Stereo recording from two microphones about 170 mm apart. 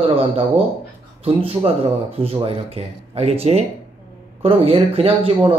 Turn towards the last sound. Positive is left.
turn(degrees=-35)  # may be behind; listen again after turning